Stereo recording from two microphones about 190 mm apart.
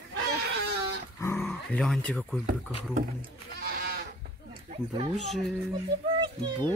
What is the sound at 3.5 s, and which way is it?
Goat, 50° right (ahead or behind).